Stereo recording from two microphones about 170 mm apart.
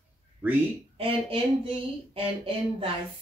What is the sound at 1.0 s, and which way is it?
Speech, 30° right (ahead or behind).